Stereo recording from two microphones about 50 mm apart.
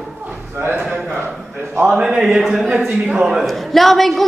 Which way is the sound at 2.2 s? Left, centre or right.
Centre.